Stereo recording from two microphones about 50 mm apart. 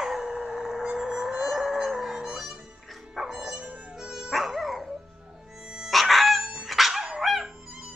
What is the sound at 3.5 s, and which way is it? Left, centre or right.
Music, right.